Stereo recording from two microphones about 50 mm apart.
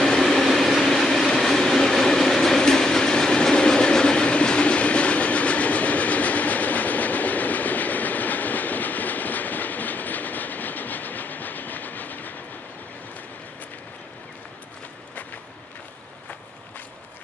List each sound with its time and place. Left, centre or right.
0.1 s train: centre; by 12.4 s left